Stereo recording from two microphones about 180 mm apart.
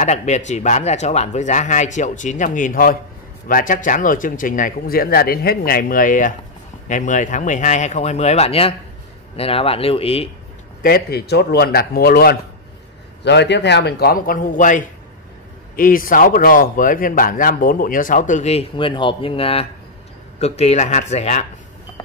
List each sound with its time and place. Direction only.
0.0 s speech: 40° left (ahead or behind)
10.8 s a man's voice: 60° left (ahead or behind)
13.2 s a man's voice: 75° left (ahead or behind); by 21.5 s 40° left (ahead or behind)